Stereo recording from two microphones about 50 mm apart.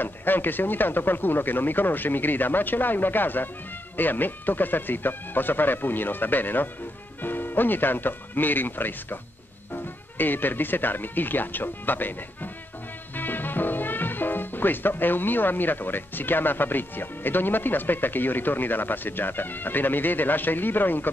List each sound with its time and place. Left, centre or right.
0.0 s speech: left